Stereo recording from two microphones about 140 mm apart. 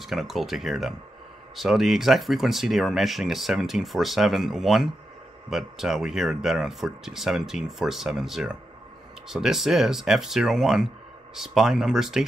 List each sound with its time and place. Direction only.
0.0 s speech: centre (ahead or behind)